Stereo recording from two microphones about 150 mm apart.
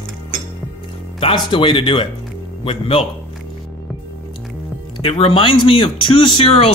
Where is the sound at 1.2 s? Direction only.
35° left (ahead or behind).